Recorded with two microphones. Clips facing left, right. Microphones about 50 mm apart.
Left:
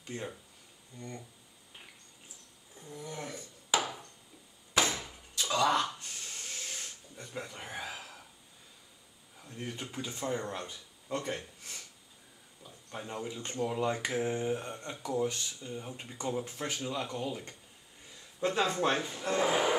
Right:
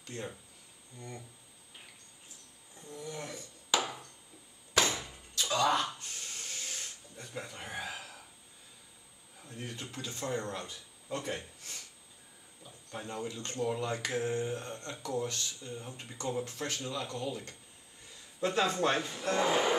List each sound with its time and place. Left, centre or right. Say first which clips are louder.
0.0 s speech: left 1 dB; centre
0.9 s speech: left 2 dB; centre
2.9 s speech: even; centre
3.7 s chop: left 1 dB; centre
5.3 s speech: left 1 dB; centre
6.3 s a sound: left 1 dB; centre
9.4 s speech: left 1 dB; centre
9.7 s speech: left 3 dB; centre
11.1 s speech: left 2 dB; centre
12.6 s speech: even; centre